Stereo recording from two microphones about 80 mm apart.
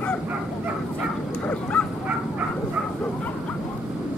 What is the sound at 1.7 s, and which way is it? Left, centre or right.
Dog, centre.